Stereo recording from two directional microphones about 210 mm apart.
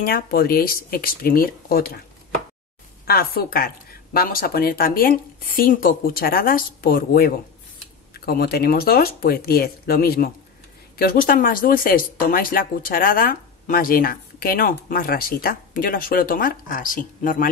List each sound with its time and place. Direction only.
0.0 s speech: 45° left (ahead or behind)
3.1 s speech: 45° left (ahead or behind)